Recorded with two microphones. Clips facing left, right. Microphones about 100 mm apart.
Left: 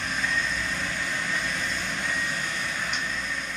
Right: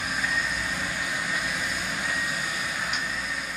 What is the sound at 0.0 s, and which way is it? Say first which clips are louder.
Vehicle: even; 10° right (ahead or behind).